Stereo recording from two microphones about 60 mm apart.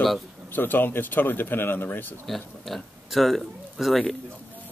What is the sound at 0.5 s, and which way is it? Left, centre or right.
Speech, left.